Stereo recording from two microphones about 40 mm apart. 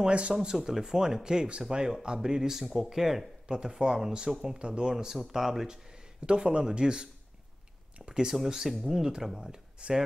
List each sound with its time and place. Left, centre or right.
0.0 s speech: right
2.6 s speech: centre; by 4.9 s right
5.3 s speech: centre
6.2 s speech: right
8.5 s speech: centre